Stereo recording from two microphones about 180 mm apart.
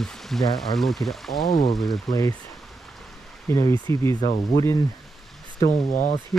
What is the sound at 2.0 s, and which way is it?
Speech, 20° left (ahead or behind).